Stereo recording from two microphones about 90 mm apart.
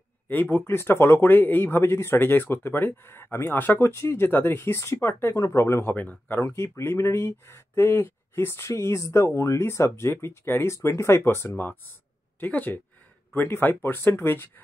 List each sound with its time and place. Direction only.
0.3 s speech: 20° left (ahead or behind)
5.9 s speech: 20° left (ahead or behind)
6.4 s speech: 30° left (ahead or behind)